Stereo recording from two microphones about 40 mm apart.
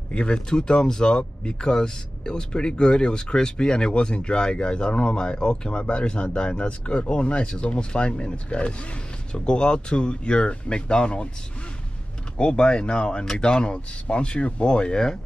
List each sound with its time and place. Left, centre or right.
0.1 s speech: left
12.4 s speech: left